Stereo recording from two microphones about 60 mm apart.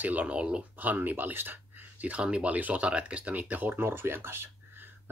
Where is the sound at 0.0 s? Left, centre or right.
Right.